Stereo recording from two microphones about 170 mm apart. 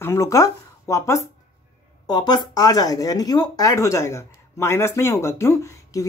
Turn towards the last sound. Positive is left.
turn(degrees=20)  # may be behind; listen again after turning